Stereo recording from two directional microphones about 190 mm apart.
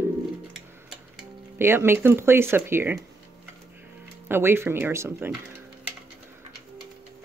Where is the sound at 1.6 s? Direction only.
10° right (ahead or behind).